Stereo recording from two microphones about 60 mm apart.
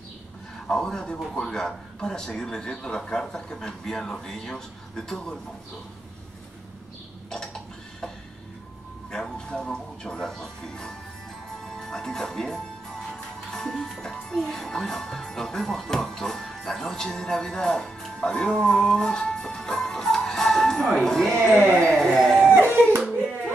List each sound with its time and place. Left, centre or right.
0.7 s a man's voice: centre
7.2 s a sound: centre
9.1 s speech: centre
11.5 s music: centre
14.3 s speech: centre
21.9 s a sound: centre
22.5 s hands: right